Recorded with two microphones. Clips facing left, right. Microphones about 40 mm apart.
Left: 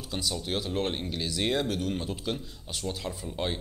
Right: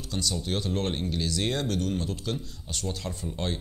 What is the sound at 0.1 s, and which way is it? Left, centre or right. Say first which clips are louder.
A man's voice: right 1 dB; centre.